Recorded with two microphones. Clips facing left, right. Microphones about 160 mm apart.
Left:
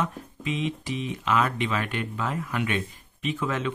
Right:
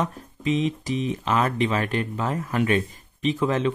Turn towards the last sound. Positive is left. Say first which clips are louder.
# right 6 dB
turn(degrees=-35)  # may be behind; listen again after turning